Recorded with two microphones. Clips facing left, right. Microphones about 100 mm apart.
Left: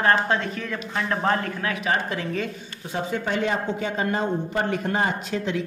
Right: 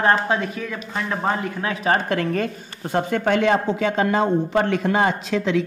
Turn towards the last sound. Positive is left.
turn(degrees=-90)